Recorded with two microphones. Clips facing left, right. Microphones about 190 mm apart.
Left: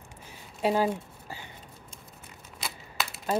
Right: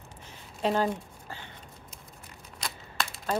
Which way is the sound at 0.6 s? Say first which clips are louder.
Left 1 dB; 10° left (ahead or behind).